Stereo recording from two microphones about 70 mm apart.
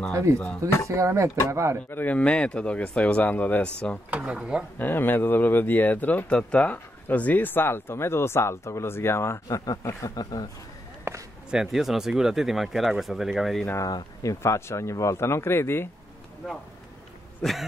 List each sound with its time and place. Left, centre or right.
0.1 s speech: right
1.9 s speech: left
2.1 s speech: centre
4.2 s speech: centre
4.7 s speech: left
9.8 s a man's voice: left
11.1 s a sound: right
11.5 s speech: centre
14.2 s speech: left
17.4 s speech: centre